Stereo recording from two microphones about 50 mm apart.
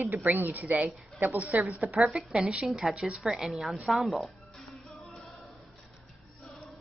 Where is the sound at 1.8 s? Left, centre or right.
Centre.